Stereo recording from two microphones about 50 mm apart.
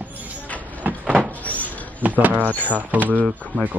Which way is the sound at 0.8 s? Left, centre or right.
Right.